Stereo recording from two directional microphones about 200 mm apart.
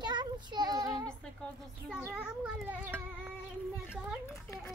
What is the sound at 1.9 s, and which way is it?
Speech, 5° right (ahead or behind).